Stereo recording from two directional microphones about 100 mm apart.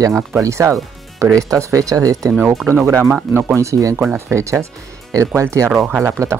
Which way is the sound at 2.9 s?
20° right (ahead or behind).